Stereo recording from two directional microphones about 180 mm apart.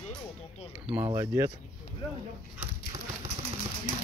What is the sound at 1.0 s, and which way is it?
Speech, 25° right (ahead or behind).